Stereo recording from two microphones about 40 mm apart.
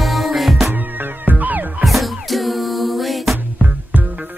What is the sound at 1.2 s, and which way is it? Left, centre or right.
Music, right.